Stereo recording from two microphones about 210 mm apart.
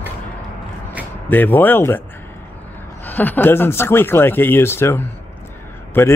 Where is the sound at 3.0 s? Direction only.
10° left (ahead or behind).